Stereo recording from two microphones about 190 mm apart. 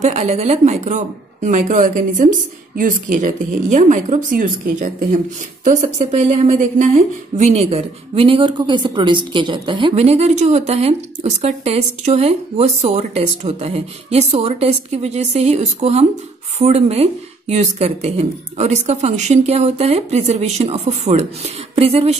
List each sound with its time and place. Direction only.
0.0 s speech: 35° right (ahead or behind)